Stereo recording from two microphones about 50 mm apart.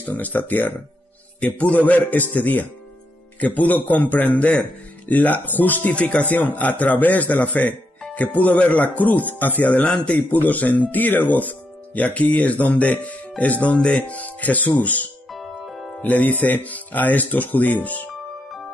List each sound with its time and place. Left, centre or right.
0.0 s a man's voice: left
5.9 s speech: left
10.1 s speech: left
15.3 s music: centre
16.0 s speech: left